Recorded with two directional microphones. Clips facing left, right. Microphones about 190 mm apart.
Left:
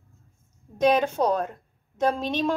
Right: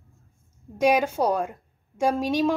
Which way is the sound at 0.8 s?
10° right (ahead or behind).